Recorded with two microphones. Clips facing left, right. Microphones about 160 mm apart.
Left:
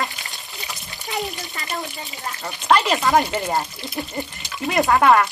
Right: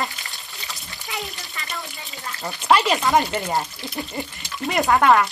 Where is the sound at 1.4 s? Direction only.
40° left (ahead or behind).